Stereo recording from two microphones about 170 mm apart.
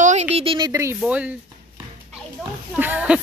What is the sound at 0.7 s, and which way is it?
Speech, 15° right (ahead or behind).